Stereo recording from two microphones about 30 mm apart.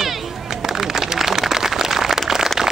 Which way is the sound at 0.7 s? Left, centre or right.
Centre.